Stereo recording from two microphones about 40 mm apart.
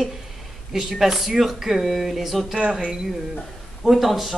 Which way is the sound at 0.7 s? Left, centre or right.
Centre.